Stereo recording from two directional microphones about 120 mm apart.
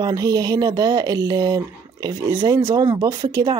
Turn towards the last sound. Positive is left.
turn(degrees=-40)  # may be behind; listen again after turning